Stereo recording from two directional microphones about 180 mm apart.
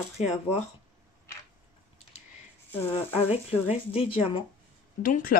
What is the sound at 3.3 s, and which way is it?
Speech, 35° left (ahead or behind).